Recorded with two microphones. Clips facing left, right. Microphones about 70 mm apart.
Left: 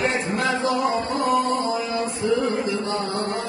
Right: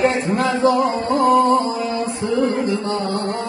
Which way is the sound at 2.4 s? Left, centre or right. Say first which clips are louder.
Right 4 dB; right.